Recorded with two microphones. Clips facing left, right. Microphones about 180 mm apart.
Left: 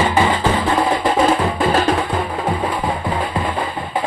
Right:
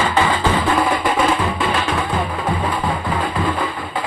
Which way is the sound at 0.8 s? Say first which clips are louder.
Left 2 dB; 35° left (ahead or behind).